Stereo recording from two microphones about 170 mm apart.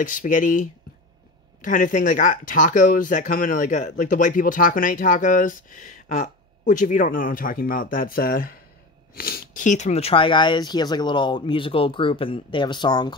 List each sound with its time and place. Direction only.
0.0 s speech: 50° left (ahead or behind); by 13.1 s 25° left (ahead or behind)